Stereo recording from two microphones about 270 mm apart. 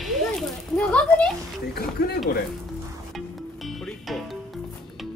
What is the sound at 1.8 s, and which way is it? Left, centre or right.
Speech, left.